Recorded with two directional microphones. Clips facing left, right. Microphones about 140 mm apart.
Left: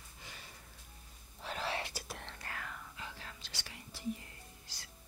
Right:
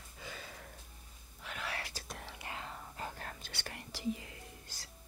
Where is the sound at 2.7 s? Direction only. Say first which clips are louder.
Right 4 dB; 40° right (ahead or behind); by 4.3 s 90° right.